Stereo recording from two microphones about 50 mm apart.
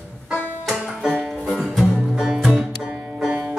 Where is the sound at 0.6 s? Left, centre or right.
Centre.